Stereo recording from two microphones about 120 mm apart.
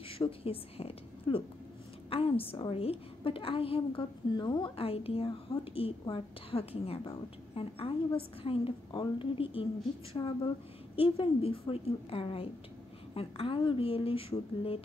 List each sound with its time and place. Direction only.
0.1 s a woman's voice: 50° left (ahead or behind)
8.4 s a woman's voice: 50° left (ahead or behind)